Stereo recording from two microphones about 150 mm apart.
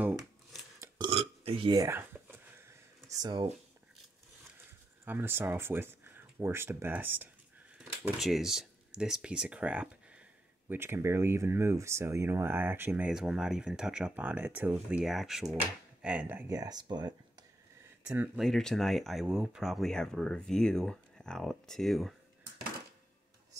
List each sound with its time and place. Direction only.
0.9 s burping: 35° right (ahead or behind)
1.7 s speech: 25° right (ahead or behind)
2.0 s a sound: 15° right (ahead or behind)
3.2 s speech: 30° right (ahead or behind)
5.0 s speech: 15° right (ahead or behind)
16.4 s speech: 25° right (ahead or behind)
18.0 s speech: 10° right (ahead or behind)
18.4 s speech: 5° left (ahead or behind)